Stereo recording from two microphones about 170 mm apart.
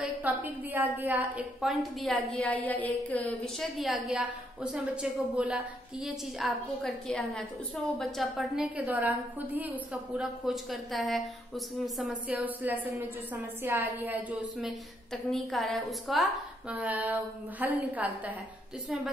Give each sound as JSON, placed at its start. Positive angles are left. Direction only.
{"t": 0.0, "sound": "a woman's voice", "side_deg": -10}